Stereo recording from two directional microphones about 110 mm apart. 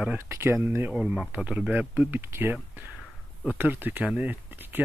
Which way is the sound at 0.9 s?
5° right (ahead or behind).